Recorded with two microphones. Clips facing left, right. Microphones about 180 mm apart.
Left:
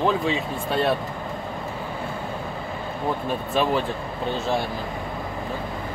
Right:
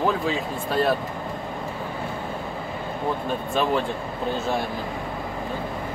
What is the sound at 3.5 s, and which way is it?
Speech, centre (ahead or behind).